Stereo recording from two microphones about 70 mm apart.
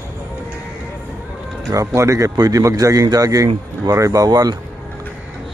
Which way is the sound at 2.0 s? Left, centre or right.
Right.